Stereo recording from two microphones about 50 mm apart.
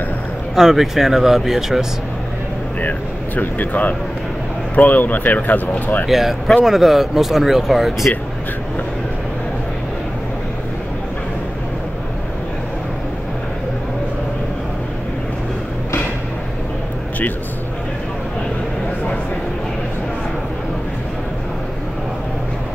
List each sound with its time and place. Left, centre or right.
0.6 s speech: centre
2.8 s speech: left
6.0 s speech: centre